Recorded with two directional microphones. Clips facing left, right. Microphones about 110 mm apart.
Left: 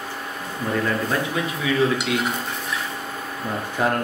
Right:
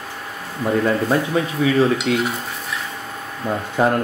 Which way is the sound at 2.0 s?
Centre (ahead or behind).